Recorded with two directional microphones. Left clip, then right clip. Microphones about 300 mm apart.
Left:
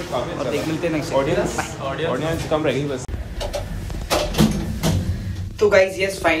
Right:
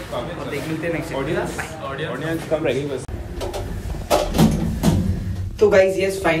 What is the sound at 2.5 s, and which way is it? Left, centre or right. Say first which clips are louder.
Speech: left 1 dB; left.